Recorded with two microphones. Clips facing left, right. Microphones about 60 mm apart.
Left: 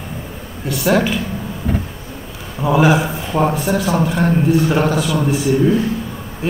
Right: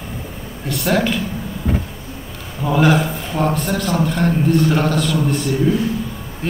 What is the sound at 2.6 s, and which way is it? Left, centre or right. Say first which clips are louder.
A man's voice: left 2 dB; centre.